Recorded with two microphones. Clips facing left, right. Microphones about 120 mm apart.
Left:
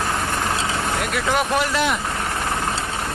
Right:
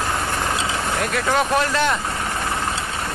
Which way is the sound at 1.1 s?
5° left (ahead or behind).